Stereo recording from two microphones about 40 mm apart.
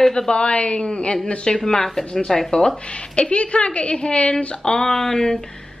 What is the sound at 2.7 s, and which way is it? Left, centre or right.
A woman's voice, left.